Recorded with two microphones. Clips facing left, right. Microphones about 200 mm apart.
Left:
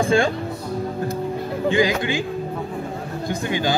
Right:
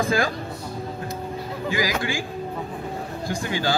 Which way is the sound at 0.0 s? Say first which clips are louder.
Left 4 dB; 30° left (ahead or behind).